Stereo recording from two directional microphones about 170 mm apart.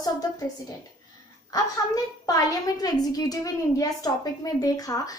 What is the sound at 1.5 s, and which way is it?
A woman's voice, 20° left (ahead or behind).